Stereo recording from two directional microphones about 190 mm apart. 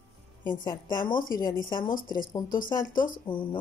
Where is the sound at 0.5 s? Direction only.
25° left (ahead or behind).